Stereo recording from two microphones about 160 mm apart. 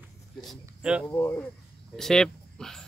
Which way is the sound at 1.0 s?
10° left (ahead or behind).